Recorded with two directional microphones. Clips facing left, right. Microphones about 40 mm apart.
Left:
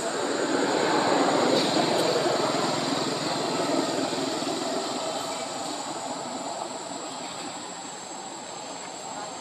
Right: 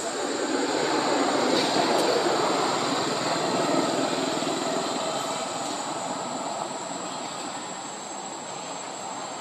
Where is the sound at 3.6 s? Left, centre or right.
Right.